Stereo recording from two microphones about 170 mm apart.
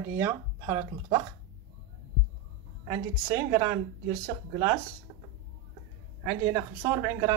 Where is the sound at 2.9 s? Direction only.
15° right (ahead or behind).